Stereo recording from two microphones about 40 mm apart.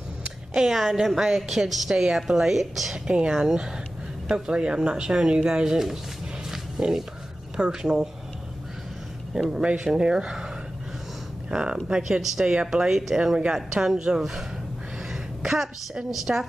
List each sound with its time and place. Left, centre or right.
0.6 s a woman's voice: centre
3.1 s a woman's voice: centre
6.5 s a sound: centre
7.5 s a woman's voice: centre
9.3 s a woman's voice: centre
11.5 s speech: centre
12.9 s a woman's voice: centre
15.4 s a woman's voice: centre